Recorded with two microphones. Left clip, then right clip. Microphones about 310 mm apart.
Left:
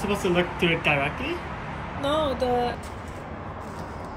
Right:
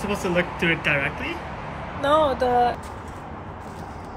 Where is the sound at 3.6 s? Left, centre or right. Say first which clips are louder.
Even; centre.